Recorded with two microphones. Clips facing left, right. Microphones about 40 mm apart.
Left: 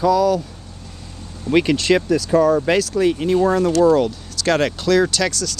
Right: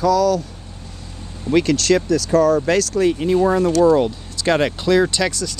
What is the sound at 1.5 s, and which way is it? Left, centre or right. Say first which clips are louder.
Speech: even; left.